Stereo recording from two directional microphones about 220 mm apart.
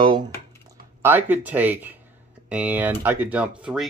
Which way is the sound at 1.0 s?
10° right (ahead or behind).